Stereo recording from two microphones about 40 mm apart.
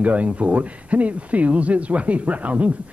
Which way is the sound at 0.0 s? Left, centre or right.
Right.